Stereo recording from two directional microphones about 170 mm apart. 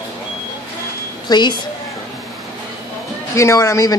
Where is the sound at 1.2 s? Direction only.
25° left (ahead or behind).